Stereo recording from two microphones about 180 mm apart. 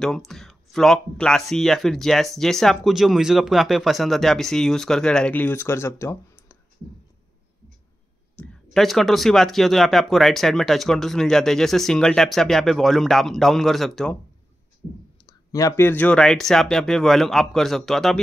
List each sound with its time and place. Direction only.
0.0 s speech: centre (ahead or behind)
8.4 s speech: centre (ahead or behind)
15.2 s speech: 20° left (ahead or behind); by 18.2 s centre (ahead or behind)